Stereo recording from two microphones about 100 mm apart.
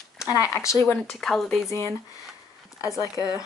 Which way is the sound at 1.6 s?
30° left (ahead or behind).